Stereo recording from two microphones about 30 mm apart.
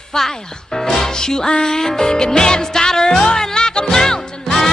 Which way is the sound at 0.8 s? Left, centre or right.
Centre.